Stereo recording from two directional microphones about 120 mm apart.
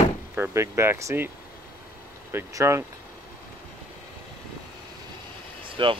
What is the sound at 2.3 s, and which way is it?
Speech, 20° right (ahead or behind).